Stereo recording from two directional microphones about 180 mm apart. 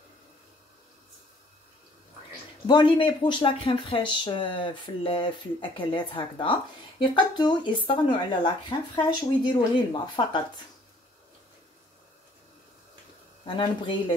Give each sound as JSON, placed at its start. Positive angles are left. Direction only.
{"t": 2.6, "sound": "speech", "side_deg": 30}
{"t": 13.5, "sound": "speech", "side_deg": 25}